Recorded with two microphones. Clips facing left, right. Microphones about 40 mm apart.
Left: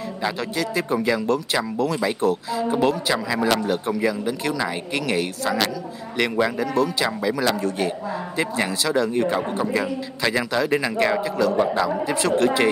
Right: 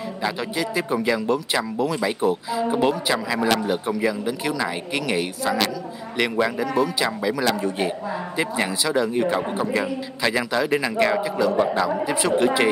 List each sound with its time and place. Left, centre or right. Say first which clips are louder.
0.2 s a man's voice: even; centre
7.4 s a man's voice: even; centre